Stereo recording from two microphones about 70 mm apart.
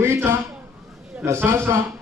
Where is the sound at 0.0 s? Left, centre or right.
Right.